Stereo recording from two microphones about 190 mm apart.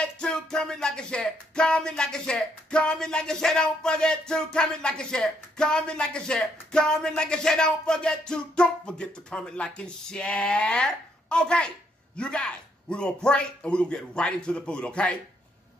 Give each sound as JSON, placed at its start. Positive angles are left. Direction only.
{"t": 0.0, "sound": "music", "side_deg": 5}